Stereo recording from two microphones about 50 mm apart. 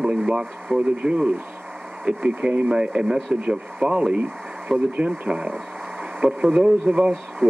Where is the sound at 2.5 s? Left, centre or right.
Right.